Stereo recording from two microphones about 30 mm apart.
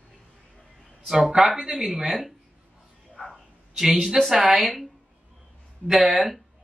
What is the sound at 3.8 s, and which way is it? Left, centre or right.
A woman's voice, centre.